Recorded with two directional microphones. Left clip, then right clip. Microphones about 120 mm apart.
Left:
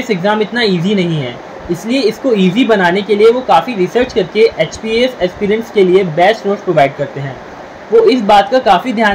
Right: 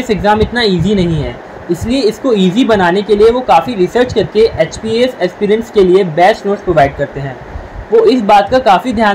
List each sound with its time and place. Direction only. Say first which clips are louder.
0.0 s a woman's voice: right 2 dB; 20° right (ahead or behind)
7.9 s a woman's voice: even; 20° right (ahead or behind)